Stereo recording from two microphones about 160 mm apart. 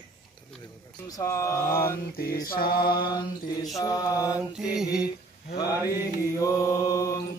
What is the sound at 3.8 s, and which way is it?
Mantra, 20° left (ahead or behind).